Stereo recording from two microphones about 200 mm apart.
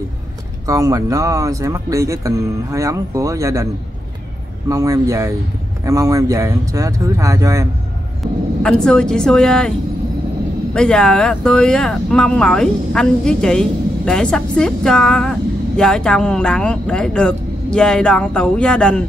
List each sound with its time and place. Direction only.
0.7 s speech: 15° right (ahead or behind)
4.6 s speech: 15° right (ahead or behind)
8.2 s speech: 5° left (ahead or behind)